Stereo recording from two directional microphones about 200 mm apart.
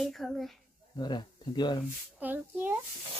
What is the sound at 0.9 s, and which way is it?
Speech, 20° left (ahead or behind).